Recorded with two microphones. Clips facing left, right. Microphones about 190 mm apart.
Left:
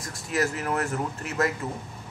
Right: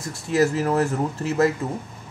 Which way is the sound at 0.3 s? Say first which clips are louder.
Right 7 dB; 30° right (ahead or behind).